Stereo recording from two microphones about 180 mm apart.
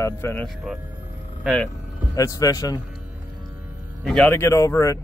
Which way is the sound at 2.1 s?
20° left (ahead or behind).